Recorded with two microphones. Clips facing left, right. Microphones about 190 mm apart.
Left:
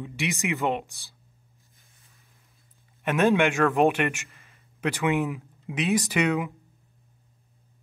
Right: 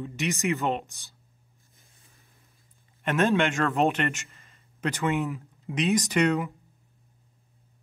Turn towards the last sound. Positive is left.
turn(degrees=5)  # may be behind; listen again after turning